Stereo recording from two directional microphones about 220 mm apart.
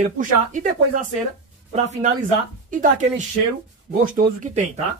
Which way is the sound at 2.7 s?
35° right (ahead or behind).